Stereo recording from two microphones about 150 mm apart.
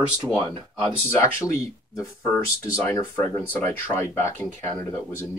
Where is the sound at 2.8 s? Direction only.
15° left (ahead or behind).